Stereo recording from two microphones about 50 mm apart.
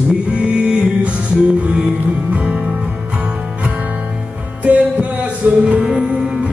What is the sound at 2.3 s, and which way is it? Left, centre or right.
Music, right.